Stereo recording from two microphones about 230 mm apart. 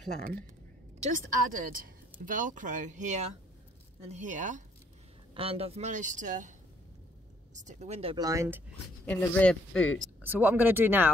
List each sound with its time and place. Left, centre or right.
1.0 s a woman's voice: right
7.5 s speech: right; by 8.6 s centre
9.0 s speech: centre
10.2 s speech: centre